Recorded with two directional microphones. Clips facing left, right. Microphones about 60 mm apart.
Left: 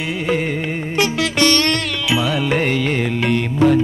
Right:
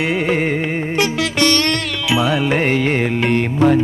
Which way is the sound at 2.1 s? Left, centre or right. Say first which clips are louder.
Right 2 dB; right.